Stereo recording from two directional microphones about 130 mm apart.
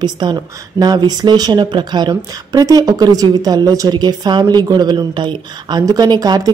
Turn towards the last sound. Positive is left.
turn(degrees=-30)  # may be behind; listen again after turning